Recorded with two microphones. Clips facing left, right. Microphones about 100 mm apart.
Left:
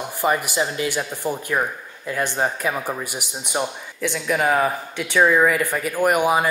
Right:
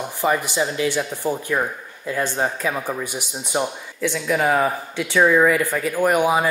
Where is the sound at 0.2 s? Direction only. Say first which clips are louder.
Even; 10° left (ahead or behind).